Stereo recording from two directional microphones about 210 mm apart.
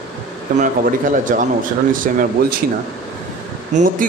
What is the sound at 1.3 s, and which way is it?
Speech, 40° right (ahead or behind).